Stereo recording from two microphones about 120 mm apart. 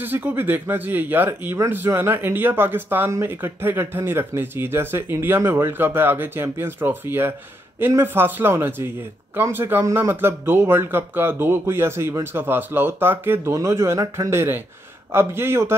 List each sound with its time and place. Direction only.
0.0 s a man's voice: 15° right (ahead or behind)